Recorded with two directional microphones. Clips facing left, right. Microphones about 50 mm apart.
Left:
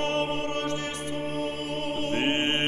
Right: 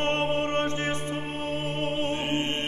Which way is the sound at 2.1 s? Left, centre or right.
Left.